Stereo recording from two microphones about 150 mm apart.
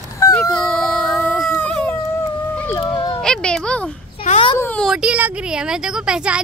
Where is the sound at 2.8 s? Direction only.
30° left (ahead or behind).